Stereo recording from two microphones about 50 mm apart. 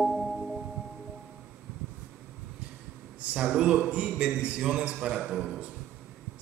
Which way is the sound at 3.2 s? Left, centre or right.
Right.